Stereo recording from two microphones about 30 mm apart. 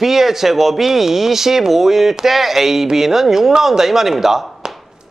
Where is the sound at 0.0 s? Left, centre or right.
Centre.